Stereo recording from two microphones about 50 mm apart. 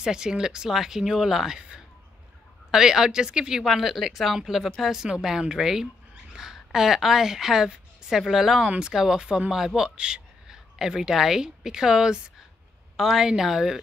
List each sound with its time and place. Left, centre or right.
0.0 s speech: centre
2.7 s a woman's voice: centre